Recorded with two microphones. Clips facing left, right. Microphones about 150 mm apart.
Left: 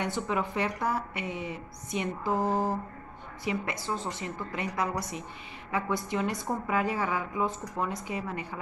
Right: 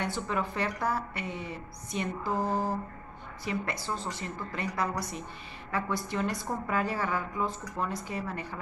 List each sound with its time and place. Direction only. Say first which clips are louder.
0.0 s a woman's voice: left 2 dB; 20° left (ahead or behind)